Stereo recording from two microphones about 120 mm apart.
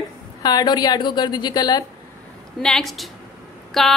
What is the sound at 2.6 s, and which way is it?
A woman's voice, 5° left (ahead or behind).